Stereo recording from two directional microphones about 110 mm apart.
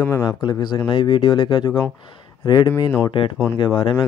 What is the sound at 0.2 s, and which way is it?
Speech, 40° left (ahead or behind).